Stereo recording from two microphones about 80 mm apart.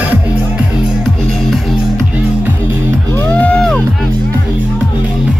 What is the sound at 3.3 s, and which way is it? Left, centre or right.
Music, centre.